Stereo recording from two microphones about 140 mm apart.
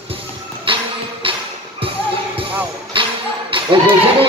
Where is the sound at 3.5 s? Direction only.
35° right (ahead or behind).